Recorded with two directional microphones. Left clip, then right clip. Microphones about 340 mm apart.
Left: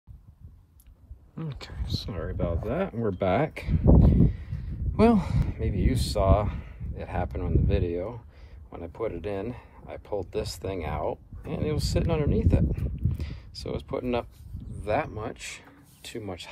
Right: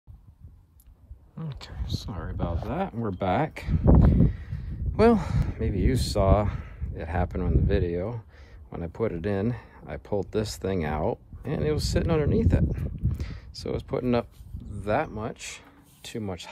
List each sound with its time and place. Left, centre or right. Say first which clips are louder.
1.3 s speech: left 2 dB; centre
4.0 s a sound: even; right
5.5 s speech: right 4 dB; right